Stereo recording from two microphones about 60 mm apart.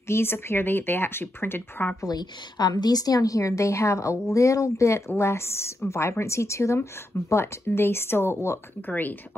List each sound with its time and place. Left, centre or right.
0.1 s speech: left
2.7 s a woman's voice: left